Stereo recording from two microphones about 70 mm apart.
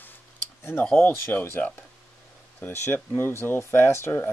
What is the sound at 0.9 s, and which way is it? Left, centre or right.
Speech, left.